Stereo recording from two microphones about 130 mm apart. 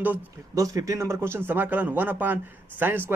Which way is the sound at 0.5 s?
25° right (ahead or behind).